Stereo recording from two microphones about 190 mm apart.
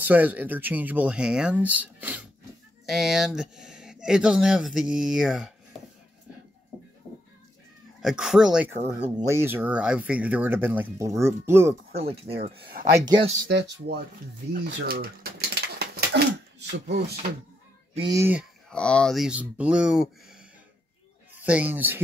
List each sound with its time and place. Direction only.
0.0 s speech: 10° right (ahead or behind)
8.0 s speech: centre (ahead or behind)
8.8 s speech: 15° right (ahead or behind)
11.9 s speech: 30° right (ahead or behind)
13.5 s speech: 60° right (ahead or behind)
14.5 s pigeon: 55° right (ahead or behind)
17.9 s speech: 25° right (ahead or behind)
18.7 s speech: 5° left (ahead or behind)